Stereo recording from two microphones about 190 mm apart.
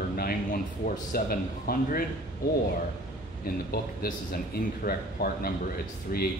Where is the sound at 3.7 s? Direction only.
50° left (ahead or behind).